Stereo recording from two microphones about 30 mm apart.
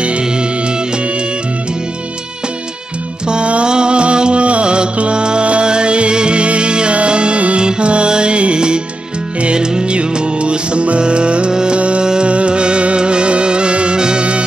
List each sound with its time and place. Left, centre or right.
0.2 s music: right
3.6 s music: right
12.3 s music: right